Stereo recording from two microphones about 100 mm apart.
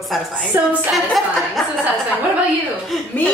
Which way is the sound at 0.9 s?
Centre (ahead or behind).